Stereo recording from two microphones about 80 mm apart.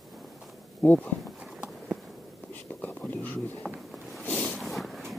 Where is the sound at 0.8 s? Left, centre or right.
Centre.